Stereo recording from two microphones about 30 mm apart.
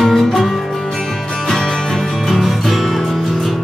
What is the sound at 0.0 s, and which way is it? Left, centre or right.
Music, centre.